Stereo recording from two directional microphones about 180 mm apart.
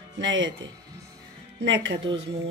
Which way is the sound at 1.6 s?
80° right.